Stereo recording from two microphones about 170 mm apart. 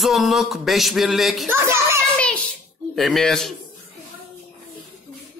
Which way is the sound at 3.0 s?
Centre (ahead or behind).